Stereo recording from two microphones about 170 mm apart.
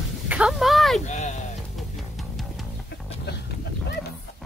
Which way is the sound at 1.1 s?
45° left (ahead or behind).